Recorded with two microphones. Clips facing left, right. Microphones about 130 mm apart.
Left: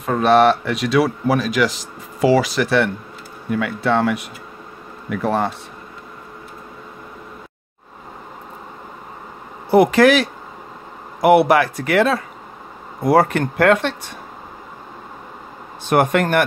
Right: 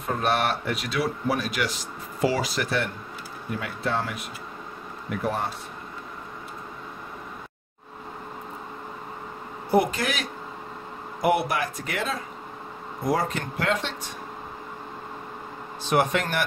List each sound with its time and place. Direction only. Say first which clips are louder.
0.0 s a man's voice: left 11 dB; 90° left
9.7 s a man's voice: left 11 dB; 90° left; by 14.1 s 60° left (ahead or behind)
15.9 s speech: left 7 dB; 55° left (ahead or behind)